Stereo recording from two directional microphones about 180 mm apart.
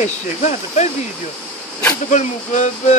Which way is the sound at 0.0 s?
40° left (ahead or behind).